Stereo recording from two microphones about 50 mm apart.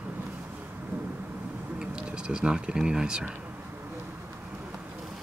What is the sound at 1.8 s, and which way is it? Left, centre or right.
Speech, centre.